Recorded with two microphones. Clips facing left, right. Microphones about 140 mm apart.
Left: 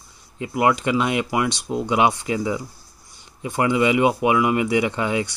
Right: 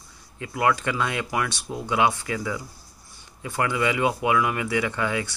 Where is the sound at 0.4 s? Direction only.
20° left (ahead or behind).